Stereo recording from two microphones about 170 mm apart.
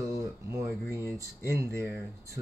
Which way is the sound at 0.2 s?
20° right (ahead or behind).